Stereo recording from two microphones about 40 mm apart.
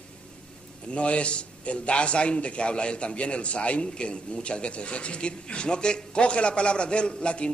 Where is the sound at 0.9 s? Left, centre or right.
Left.